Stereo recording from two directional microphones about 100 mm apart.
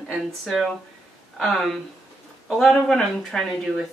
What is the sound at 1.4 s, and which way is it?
Speech, 5° left (ahead or behind).